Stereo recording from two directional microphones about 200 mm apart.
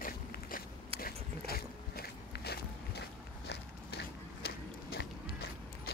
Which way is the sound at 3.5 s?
55° left (ahead or behind).